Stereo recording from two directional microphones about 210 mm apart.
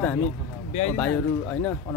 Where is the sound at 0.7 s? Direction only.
30° left (ahead or behind).